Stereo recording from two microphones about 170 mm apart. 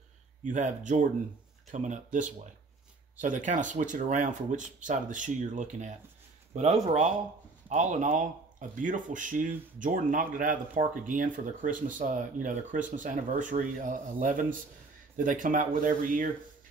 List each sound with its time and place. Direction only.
0.5 s speech: 45° right (ahead or behind)